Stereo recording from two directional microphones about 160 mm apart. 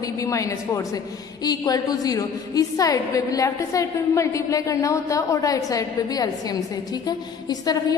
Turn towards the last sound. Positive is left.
turn(degrees=25)  # may be behind; listen again after turning